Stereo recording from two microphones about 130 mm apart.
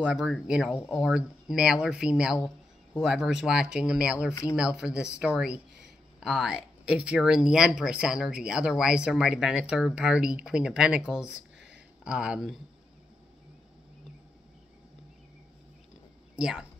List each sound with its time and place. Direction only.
0.0 s speech: 5° right (ahead or behind)
4.3 s speech: 25° left (ahead or behind)
4.6 s speech: 5° right (ahead or behind)
16.3 s speech: 5° right (ahead or behind)